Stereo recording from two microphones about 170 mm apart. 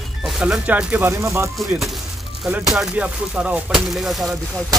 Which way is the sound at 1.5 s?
Centre (ahead or behind).